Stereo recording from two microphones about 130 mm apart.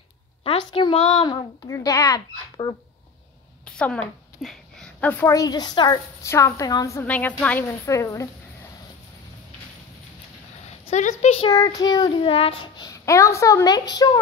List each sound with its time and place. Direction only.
0.4 s a woman's voice: 45° left (ahead or behind)
1.7 s a woman's voice: 25° left (ahead or behind)
3.6 s a sound: 10° left (ahead or behind)
5.3 s a woman's voice: 30° left (ahead or behind)
7.0 s a woman's voice: 15° left (ahead or behind)
7.6 s a woman's voice: 20° left (ahead or behind)
10.9 s speech: 60° left (ahead or behind)
11.3 s a child's voice: 35° left (ahead or behind)
12.2 s a child's voice: 45° left (ahead or behind)